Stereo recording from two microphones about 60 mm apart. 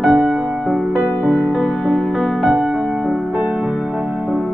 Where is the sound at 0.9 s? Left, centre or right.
Right.